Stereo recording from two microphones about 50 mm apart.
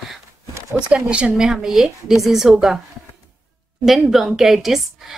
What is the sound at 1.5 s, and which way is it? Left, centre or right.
Speech, centre.